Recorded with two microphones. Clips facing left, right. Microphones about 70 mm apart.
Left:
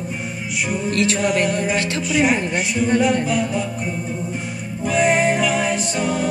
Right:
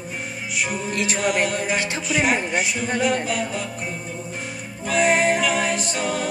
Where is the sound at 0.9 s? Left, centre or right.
Centre.